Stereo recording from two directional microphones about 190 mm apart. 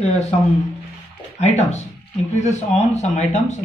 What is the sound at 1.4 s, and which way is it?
Speech, 35° left (ahead or behind).